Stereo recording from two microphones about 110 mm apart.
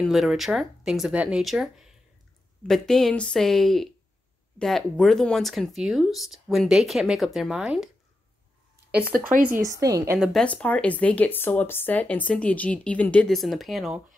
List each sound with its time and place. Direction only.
0.0 s speech: centre (ahead or behind)
8.9 s speech: 15° right (ahead or behind)
9.6 s a woman's voice: 30° right (ahead or behind)
10.1 s speech: 5° right (ahead or behind)
10.4 s speech: 10° left (ahead or behind)
13.3 s speech: centre (ahead or behind)